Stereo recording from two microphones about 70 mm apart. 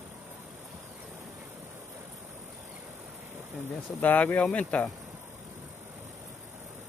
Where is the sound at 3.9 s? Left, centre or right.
Left.